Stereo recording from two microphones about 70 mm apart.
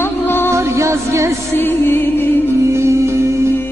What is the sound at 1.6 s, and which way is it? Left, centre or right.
Music, left.